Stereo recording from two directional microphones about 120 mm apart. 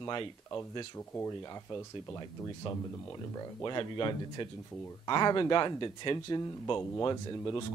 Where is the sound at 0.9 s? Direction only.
25° left (ahead or behind).